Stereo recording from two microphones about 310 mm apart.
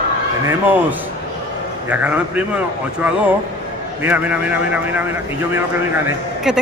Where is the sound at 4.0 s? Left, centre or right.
Centre.